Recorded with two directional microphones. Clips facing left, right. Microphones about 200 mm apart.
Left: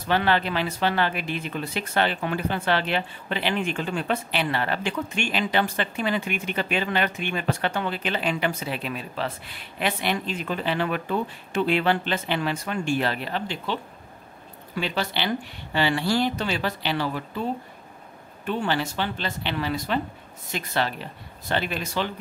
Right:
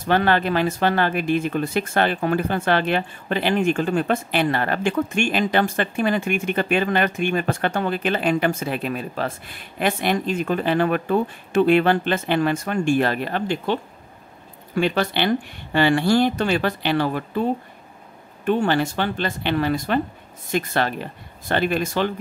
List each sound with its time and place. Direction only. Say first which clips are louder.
0.1 s speech: right 4 dB; 50° right (ahead or behind)
14.8 s speech: right 7 dB; 55° right (ahead or behind)